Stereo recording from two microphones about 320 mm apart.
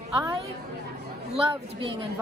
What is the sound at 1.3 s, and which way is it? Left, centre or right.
Speech, centre.